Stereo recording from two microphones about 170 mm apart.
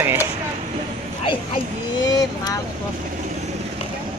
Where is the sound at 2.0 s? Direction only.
20° left (ahead or behind).